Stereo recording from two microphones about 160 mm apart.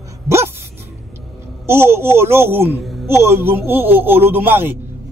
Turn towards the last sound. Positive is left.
turn(degrees=-10)  # may be behind; listen again after turning